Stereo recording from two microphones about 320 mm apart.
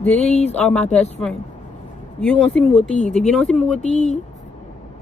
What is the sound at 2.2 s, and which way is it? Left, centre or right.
Speech, centre.